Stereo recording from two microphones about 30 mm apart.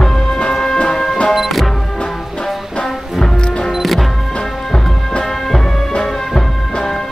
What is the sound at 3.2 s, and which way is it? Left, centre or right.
Music, left.